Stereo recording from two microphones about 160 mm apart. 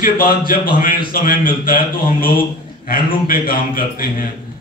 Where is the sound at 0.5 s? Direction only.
60° left (ahead or behind).